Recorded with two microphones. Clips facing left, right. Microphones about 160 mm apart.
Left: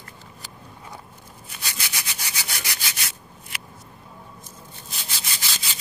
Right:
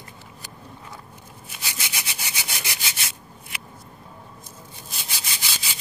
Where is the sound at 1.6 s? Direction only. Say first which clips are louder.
Even; 20° right (ahead or behind).